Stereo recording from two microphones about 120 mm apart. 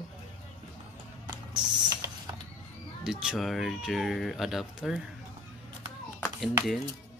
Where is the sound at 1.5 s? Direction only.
35° right (ahead or behind).